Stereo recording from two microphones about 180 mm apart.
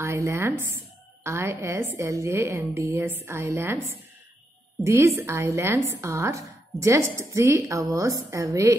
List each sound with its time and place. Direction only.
0.0 s a woman's voice: 15° right (ahead or behind)
4.8 s a woman's voice: 15° right (ahead or behind)